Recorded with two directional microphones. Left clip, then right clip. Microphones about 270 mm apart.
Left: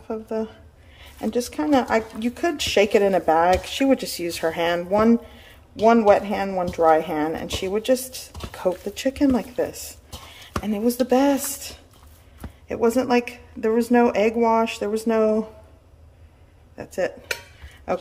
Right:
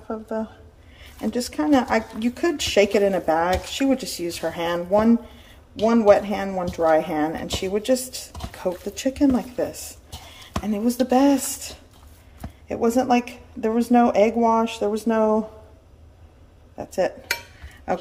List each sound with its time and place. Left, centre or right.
0.1 s speech: centre
1.2 s speech: centre
16.7 s dishes: centre
17.9 s speech: centre